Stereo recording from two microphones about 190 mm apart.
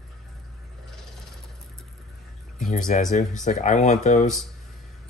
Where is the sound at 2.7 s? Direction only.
45° left (ahead or behind).